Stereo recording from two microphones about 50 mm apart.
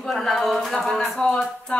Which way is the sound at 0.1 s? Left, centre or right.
Centre.